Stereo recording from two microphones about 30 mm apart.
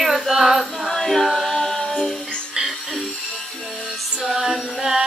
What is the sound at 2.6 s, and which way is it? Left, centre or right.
Music, centre.